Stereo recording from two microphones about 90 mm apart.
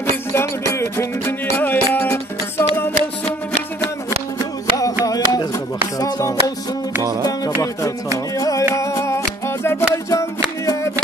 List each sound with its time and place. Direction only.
0.3 s music: 30° left (ahead or behind)
4.4 s music: 40° left (ahead or behind)
8.4 s music: 40° left (ahead or behind)
10.0 s music: 40° left (ahead or behind)